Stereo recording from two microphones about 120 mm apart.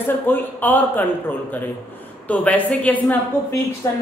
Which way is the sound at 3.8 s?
25° left (ahead or behind).